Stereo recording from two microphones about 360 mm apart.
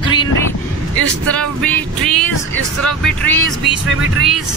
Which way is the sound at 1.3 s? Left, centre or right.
Centre.